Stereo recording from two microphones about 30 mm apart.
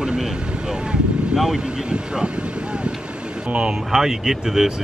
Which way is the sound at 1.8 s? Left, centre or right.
Right.